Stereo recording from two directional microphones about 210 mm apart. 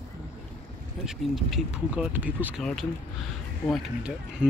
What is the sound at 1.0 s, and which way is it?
Speech, centre (ahead or behind).